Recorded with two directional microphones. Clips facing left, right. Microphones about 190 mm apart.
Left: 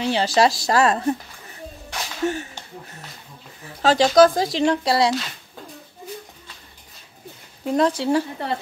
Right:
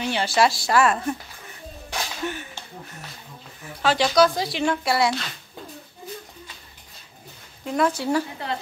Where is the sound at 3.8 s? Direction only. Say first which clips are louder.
Left 5 dB; 40° left (ahead or behind).